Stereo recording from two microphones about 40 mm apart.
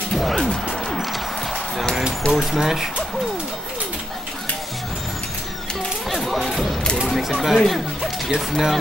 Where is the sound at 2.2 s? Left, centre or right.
Centre.